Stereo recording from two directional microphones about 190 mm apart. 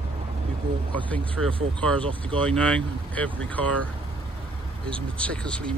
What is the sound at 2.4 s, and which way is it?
Speech, 5° left (ahead or behind).